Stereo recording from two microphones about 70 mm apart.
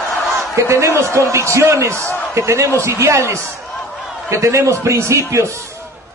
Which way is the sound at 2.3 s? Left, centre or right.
Right.